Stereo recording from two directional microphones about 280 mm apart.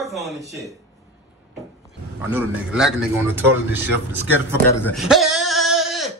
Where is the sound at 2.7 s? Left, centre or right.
Centre.